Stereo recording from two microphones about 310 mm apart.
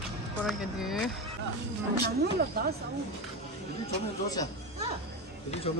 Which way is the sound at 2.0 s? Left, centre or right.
Right.